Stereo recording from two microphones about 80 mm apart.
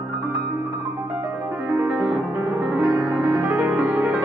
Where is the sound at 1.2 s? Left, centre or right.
Right.